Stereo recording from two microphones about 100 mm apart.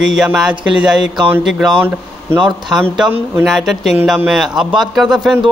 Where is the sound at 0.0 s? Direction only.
5° right (ahead or behind).